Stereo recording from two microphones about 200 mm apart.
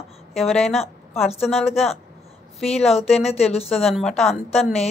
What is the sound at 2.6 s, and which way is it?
Speech, 30° left (ahead or behind).